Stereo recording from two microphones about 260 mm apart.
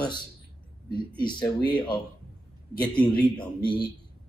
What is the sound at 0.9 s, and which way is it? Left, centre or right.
Speech, centre.